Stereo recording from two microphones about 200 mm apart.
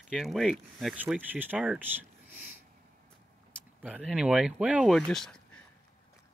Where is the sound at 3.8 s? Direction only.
5° right (ahead or behind).